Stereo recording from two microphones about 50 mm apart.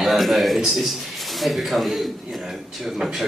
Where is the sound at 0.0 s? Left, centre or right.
Centre.